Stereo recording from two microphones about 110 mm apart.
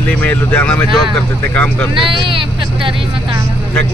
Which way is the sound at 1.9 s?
50° right (ahead or behind).